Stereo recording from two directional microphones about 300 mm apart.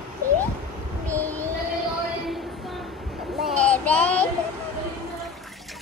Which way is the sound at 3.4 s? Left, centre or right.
Centre.